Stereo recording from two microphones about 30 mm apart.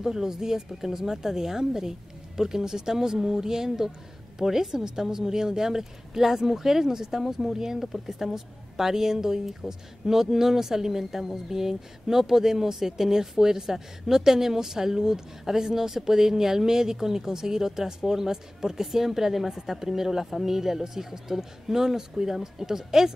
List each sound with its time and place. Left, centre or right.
0.0 s a woman's voice: centre